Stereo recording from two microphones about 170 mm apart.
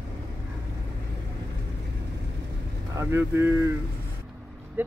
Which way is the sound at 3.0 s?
15° right (ahead or behind).